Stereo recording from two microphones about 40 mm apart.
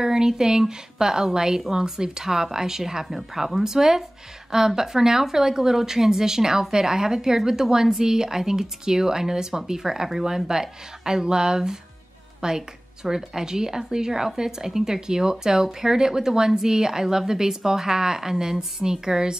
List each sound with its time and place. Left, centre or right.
0.0 s a woman's voice: centre